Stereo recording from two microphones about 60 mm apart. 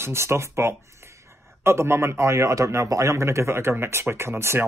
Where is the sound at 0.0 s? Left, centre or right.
Right.